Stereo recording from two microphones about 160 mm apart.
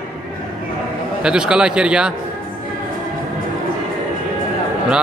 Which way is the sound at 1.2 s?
5° right (ahead or behind).